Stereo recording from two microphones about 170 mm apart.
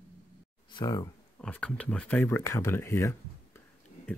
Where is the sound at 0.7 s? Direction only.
20° left (ahead or behind).